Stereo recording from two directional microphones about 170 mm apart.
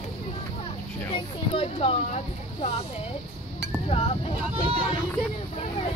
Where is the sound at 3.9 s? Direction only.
35° left (ahead or behind).